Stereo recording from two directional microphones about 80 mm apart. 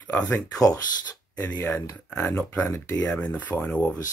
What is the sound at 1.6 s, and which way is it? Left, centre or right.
Speech, left.